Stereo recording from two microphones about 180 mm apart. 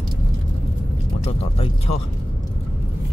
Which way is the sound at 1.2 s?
35° left (ahead or behind).